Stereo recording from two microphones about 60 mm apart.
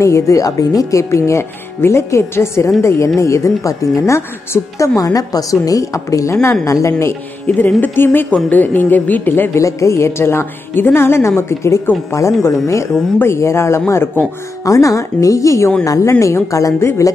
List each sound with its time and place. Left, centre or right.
0.0 s a woman's voice: left
7.4 s a woman's voice: left
9.6 s a woman's voice: left
14.6 s a woman's voice: left